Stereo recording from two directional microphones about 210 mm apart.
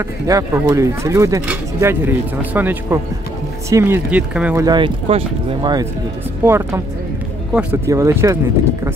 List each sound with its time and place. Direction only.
0.3 s speech: 15° right (ahead or behind)
4.6 s speech: 20° right (ahead or behind)